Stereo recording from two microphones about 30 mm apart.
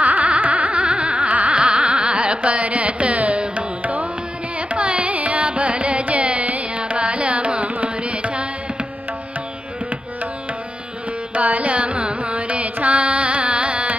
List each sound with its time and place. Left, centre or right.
0.0 s a sound: right
1.3 s carnatic music: right
1.6 s carnatic music: right
3.8 s carnatic music: right
4.6 s carnatic music: right
6.8 s carnatic music: right
11.3 s carnatic music: right
11.7 s carnatic music: right